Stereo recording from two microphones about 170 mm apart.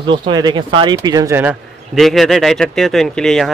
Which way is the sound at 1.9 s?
Centre (ahead or behind).